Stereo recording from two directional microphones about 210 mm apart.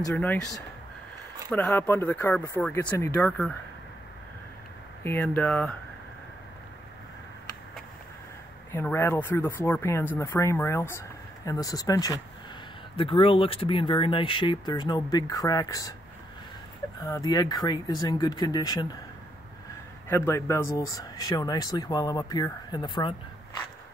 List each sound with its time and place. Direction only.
0.0 s speech: 10° left (ahead or behind)
5.0 s speech: 10° left (ahead or behind)
8.7 s speech: 10° left (ahead or behind)
17.0 s speech: 15° left (ahead or behind)
20.1 s speech: 10° left (ahead or behind)